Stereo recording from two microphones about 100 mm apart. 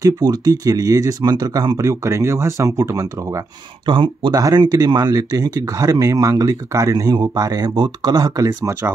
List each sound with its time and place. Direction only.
0.0 s speech: 40° right (ahead or behind)
1.9 s speech: 30° right (ahead or behind)
3.8 s speech: 55° right (ahead or behind)
4.3 s speech: 40° right (ahead or behind)
8.7 s speech: 30° right (ahead or behind)